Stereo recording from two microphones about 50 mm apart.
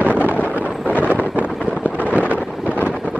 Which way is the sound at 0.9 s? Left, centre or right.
Left.